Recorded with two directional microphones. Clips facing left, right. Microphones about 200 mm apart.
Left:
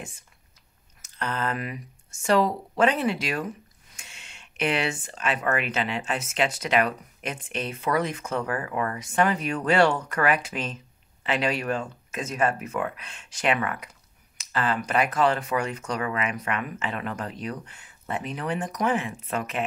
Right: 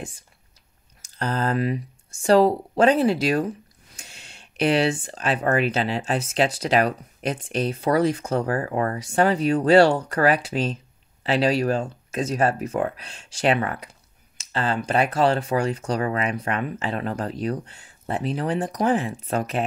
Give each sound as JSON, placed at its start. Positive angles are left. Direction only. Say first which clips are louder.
{"t": 1.0, "sound": "speech", "louder": "right 4 dB", "side_deg": -35}